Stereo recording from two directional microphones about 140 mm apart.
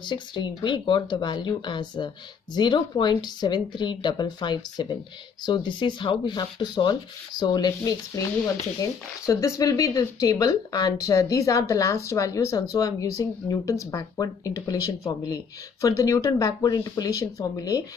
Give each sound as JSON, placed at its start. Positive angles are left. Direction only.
{"t": 0.0, "sound": "rub", "side_deg": 35}
{"t": 8.8, "sound": "speech", "side_deg": 25}